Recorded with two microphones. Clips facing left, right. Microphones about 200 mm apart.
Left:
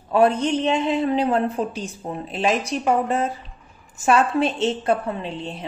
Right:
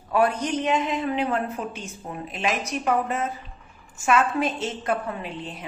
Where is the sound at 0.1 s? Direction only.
25° left (ahead or behind).